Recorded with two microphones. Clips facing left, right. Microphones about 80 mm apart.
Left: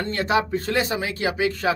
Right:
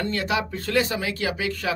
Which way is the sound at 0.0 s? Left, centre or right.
Left.